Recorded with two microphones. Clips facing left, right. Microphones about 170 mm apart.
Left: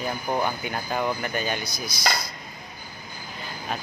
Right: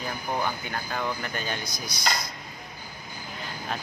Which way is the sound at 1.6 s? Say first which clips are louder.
Left 2 dB; 75° left (ahead or behind).